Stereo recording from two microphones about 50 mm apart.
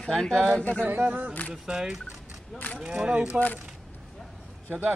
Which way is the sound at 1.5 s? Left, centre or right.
Centre.